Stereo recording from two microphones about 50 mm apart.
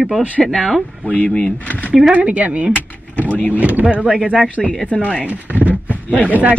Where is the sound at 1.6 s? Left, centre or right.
Left.